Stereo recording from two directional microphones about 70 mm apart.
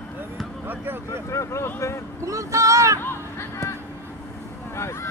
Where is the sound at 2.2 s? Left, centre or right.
Right.